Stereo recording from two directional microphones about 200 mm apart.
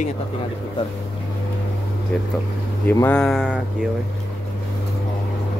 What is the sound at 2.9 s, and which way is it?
Speech, 10° left (ahead or behind).